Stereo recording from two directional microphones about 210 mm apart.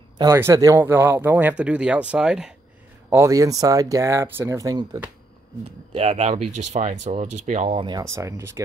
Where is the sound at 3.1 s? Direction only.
15° right (ahead or behind); by 7.8 s 35° right (ahead or behind).